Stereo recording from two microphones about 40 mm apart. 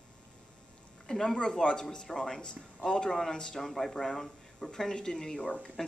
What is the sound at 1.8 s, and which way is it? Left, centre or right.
Speech, centre.